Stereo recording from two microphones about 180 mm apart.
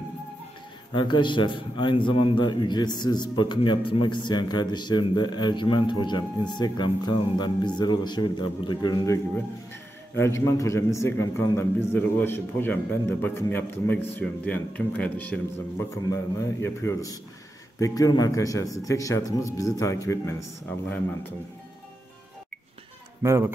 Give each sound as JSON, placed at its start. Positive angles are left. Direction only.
{"t": 0.9, "sound": "a man's voice", "side_deg": 25}
{"t": 16.6, "sound": "a man's voice", "side_deg": 15}
{"t": 23.2, "sound": "a man's voice", "side_deg": -15}